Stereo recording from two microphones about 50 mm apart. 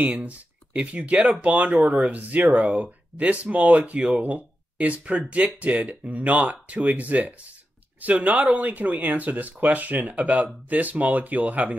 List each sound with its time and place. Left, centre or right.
0.1 s speech: right
2.5 s speech: centre
2.8 s speech: right